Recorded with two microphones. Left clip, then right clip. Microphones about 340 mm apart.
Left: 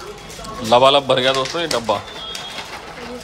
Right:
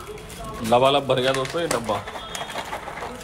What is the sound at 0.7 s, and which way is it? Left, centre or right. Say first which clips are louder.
Speech: left 6 dB; centre.